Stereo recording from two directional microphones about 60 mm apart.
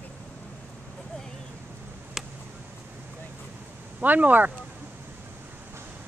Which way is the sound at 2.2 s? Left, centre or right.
Centre.